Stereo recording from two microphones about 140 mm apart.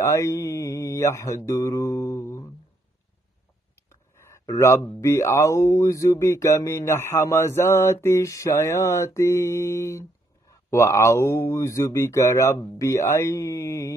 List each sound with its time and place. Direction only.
0.0 s mantra: 20° left (ahead or behind)
3.9 s speech: 20° left (ahead or behind)